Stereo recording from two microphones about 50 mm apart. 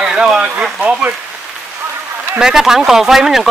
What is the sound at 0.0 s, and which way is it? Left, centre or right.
Speech, centre.